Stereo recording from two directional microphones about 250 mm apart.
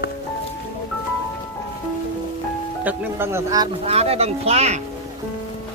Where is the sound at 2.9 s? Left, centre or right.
Centre; by 4.8 s right.